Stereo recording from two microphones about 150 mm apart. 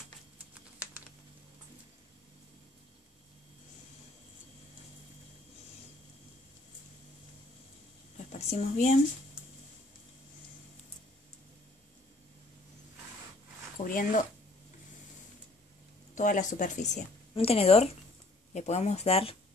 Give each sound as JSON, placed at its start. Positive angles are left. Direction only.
{"t": 8.3, "sound": "a woman's voice", "side_deg": 45}
{"t": 13.7, "sound": "speech", "side_deg": 65}
{"t": 16.2, "sound": "speech", "side_deg": 55}
{"t": 17.3, "sound": "speech", "side_deg": 40}